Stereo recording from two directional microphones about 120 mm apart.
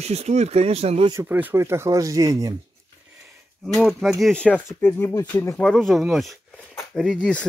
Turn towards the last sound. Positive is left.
turn(degrees=10)  # may be behind; listen again after turning